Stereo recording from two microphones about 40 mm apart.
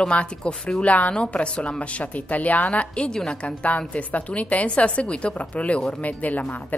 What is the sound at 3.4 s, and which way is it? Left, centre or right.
Speech, left.